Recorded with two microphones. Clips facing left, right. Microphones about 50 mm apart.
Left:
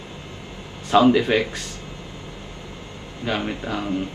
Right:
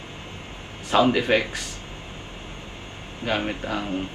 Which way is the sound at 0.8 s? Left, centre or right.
Right.